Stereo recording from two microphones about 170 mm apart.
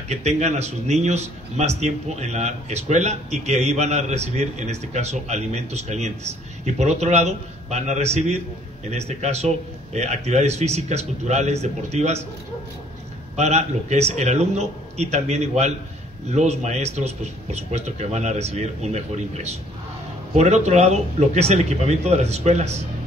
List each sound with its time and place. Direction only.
0.1 s a man's voice: 40° right (ahead or behind)
13.4 s a man's voice: 40° right (ahead or behind)